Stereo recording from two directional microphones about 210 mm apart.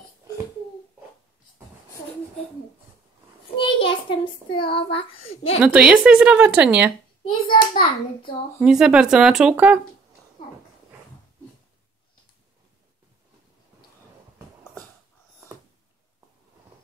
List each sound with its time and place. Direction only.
3.5 s a sound: 25° left (ahead or behind)
4.6 s speech: 50° left (ahead or behind)
4.9 s a child's voice: 25° left (ahead or behind)
5.6 s speech: 5° right (ahead or behind)
7.2 s a child's voice: 25° left (ahead or behind)
8.5 s speech: centre (ahead or behind)